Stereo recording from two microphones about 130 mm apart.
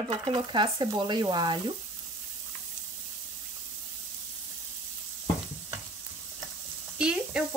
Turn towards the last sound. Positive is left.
turn(degrees=-5)  # may be behind; listen again after turning